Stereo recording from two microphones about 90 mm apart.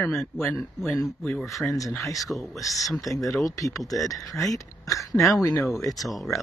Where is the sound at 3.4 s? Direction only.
40° left (ahead or behind).